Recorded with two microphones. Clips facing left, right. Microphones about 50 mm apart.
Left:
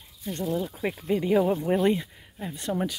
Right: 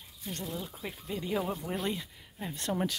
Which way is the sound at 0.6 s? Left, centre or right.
Left.